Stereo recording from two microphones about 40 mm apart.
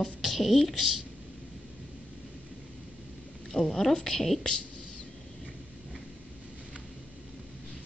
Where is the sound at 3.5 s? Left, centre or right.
Centre.